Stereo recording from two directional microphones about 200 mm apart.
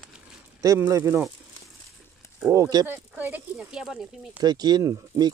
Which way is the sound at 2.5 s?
15° right (ahead or behind).